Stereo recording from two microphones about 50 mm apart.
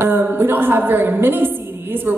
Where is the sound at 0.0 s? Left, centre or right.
Right.